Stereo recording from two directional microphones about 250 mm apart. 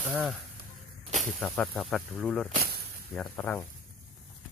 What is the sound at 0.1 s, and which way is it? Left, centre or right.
Speech, centre.